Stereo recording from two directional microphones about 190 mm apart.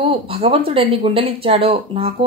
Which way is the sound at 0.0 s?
30° right (ahead or behind).